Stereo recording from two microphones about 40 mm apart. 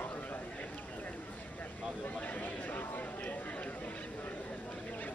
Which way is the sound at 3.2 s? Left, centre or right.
Left.